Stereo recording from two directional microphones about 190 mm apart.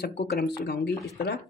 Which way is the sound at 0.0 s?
60° left (ahead or behind).